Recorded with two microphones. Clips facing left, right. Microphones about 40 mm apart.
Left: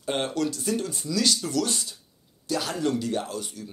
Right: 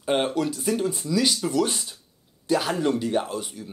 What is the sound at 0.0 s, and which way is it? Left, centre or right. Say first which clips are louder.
Speech: right 3 dB; centre.